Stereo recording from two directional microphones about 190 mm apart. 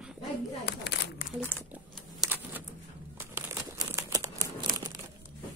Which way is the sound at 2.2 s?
10° right (ahead or behind).